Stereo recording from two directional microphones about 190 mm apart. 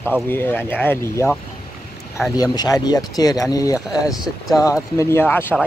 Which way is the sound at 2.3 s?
20° left (ahead or behind).